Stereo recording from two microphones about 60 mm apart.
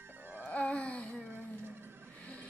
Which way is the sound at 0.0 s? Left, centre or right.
Right.